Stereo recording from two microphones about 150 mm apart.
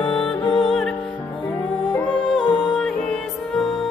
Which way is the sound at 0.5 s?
5° left (ahead or behind).